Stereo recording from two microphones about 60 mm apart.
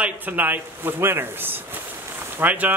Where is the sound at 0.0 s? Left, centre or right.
Right.